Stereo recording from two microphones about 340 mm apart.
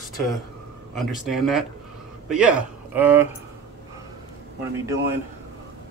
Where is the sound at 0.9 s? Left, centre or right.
Centre.